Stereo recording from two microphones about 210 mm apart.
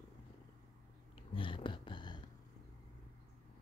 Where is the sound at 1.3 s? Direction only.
25° left (ahead or behind).